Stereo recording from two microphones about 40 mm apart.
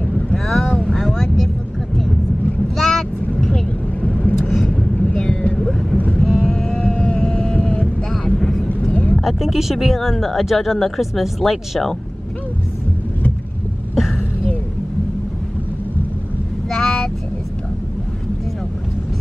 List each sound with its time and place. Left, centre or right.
0.4 s vehicle: centre
2.7 s vehicle: centre
3.5 s vehicle: left
4.6 s a sound: left
6.1 s vehicle: centre
6.9 s a sound: left
7.8 s vehicle: centre
8.8 s vehicle: left
9.4 s speech: centre
13.9 s a sound: centre
16.6 s vehicle: centre